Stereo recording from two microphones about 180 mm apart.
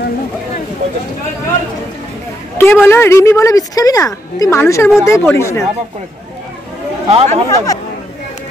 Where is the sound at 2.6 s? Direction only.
10° left (ahead or behind).